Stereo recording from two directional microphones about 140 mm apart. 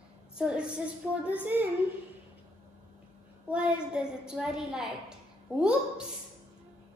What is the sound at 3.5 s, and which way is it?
A child's voice, 10° right (ahead or behind).